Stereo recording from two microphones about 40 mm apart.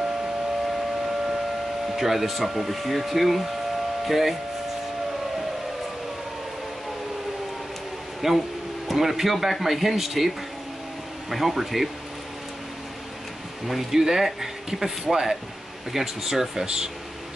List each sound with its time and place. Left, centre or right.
2.0 s speech: centre
8.2 s speech: centre
13.9 s speech: centre